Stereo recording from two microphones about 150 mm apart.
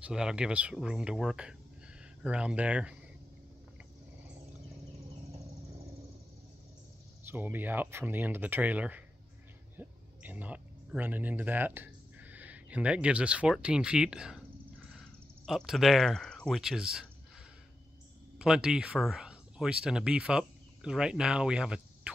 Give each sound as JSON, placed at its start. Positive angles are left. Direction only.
{"t": 0.0, "sound": "speech", "side_deg": -5}
{"t": 7.2, "sound": "speech", "side_deg": -15}
{"t": 18.4, "sound": "speech", "side_deg": -5}